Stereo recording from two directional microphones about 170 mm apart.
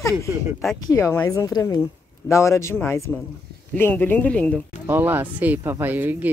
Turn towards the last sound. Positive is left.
turn(degrees=-10)  # may be behind; listen again after turning